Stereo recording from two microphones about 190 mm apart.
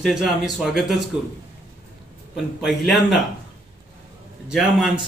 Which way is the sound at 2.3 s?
Centre (ahead or behind).